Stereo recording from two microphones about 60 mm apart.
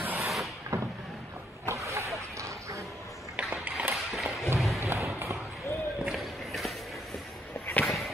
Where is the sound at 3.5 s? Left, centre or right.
Right.